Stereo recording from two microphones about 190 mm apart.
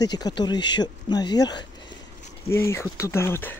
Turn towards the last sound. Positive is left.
turn(degrees=10)  # may be behind; listen again after turning